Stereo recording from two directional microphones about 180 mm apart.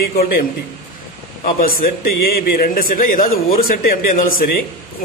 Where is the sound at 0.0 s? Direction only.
55° left (ahead or behind).